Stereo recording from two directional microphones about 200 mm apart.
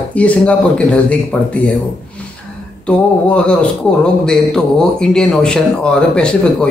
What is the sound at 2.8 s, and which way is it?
Speech, 5° left (ahead or behind).